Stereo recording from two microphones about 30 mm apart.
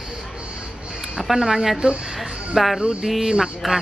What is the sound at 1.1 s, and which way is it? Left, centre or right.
Speech, centre.